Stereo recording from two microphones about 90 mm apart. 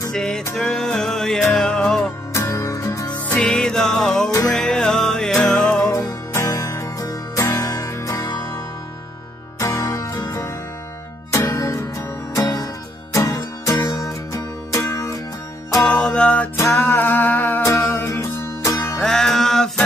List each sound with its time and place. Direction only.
0.1 s music: 5° left (ahead or behind)
2.3 s music: 35° left (ahead or behind)
3.3 s music: 10° left (ahead or behind)
5.9 s music: 40° left (ahead or behind)
9.6 s music: 40° left (ahead or behind)
11.3 s music: 35° left (ahead or behind)
12.4 s music: 45° left (ahead or behind)
13.1 s music: 35° left (ahead or behind)
15.8 s music: 10° left (ahead or behind)
16.5 s music: 25° left (ahead or behind)
17.6 s music: 35° left (ahead or behind)
18.9 s music: 5° left (ahead or behind)